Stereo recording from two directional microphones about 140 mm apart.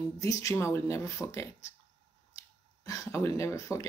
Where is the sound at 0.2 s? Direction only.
25° left (ahead or behind).